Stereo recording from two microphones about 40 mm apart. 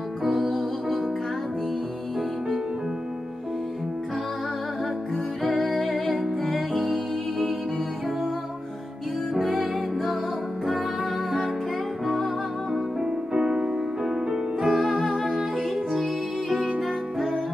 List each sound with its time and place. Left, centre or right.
0.2 s music: centre
5.4 s music: centre
9.4 s music: centre
13.0 s music: right
14.7 s music: centre